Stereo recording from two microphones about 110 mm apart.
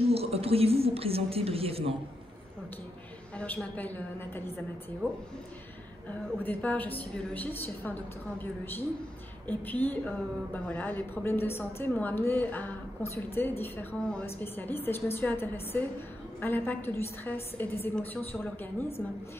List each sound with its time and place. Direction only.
0.0 s a woman's voice: 65° right (ahead or behind)
3.3 s a woman's voice: 10° left (ahead or behind)
6.3 s a woman's voice: 15° left (ahead or behind)